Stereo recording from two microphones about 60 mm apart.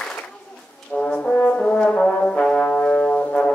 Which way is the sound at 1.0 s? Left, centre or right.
Centre.